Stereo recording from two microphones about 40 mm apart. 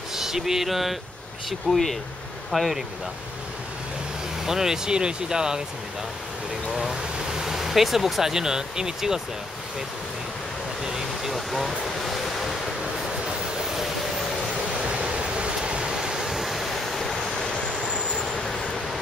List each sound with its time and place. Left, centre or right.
0.1 s a sound: centre
1.7 s speech: centre
4.5 s speech: centre
6.7 s speech: centre
10.8 s vehicle: centre
11.3 s waves: centre
14.8 s waves: right
16.0 s waves: centre
17.4 s vehicle: centre